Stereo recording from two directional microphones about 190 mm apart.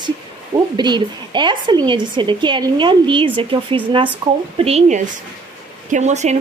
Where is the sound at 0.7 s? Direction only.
25° right (ahead or behind).